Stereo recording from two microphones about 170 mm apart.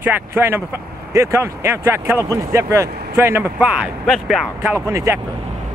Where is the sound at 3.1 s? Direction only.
15° right (ahead or behind).